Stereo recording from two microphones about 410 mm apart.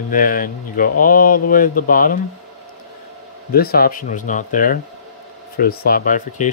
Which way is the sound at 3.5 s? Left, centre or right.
Left.